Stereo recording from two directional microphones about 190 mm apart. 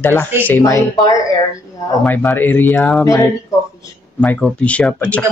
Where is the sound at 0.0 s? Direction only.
10° left (ahead or behind).